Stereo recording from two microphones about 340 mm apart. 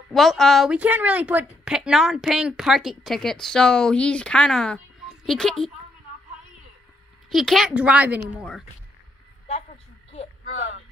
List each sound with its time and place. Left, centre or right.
0.1 s a woman's voice: centre
7.2 s a woman's voice: centre
9.5 s a sound: centre